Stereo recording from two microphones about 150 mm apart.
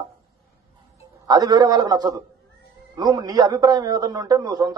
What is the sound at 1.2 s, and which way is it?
A man's voice, 25° right (ahead or behind).